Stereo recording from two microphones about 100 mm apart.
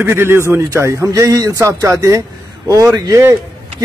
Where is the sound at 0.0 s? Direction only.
25° right (ahead or behind).